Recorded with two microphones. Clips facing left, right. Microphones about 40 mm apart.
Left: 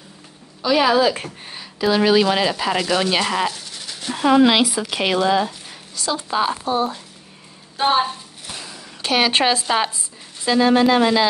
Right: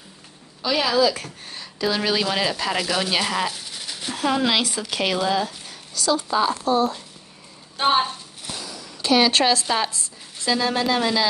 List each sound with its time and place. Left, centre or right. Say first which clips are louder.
0.7 s speech: left 5 dB; left
1.0 s speech: left 2 dB; left
1.5 s speech: left 5 dB; centre
3.5 s dog: even; centre
4.1 s speech: left 7 dB; centre
7.7 s a sound: left 2 dB; centre
8.5 s speech: even; left